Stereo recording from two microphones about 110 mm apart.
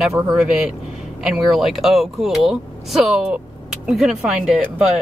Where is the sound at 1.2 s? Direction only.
5° right (ahead or behind).